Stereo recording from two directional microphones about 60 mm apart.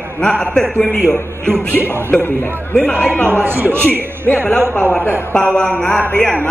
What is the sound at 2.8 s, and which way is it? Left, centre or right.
Speech, left.